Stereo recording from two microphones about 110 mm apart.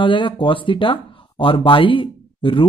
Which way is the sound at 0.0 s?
50° left (ahead or behind).